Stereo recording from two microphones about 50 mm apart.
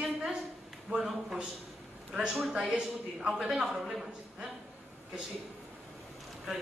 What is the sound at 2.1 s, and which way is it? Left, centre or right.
Speech, centre.